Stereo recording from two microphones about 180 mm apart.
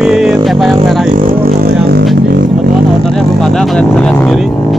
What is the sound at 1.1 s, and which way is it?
Music, 45° right (ahead or behind).